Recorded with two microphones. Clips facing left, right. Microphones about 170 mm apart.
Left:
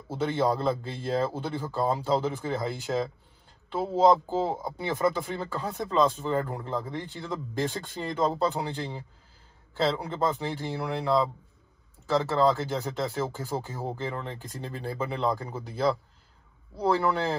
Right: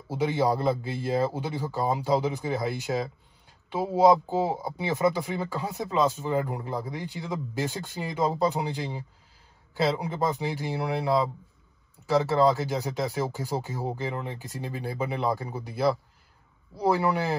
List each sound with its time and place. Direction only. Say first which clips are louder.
0.2 s speech: right 1 dB; 5° right (ahead or behind)
5.0 s speech: right 2 dB; 10° right (ahead or behind)